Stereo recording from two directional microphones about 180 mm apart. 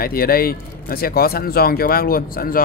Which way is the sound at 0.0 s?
55° left (ahead or behind).